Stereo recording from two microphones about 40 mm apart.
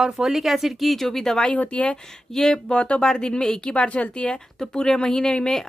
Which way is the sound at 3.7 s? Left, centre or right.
Left.